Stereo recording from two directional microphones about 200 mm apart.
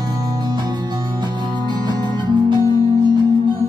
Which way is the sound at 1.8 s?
20° right (ahead or behind).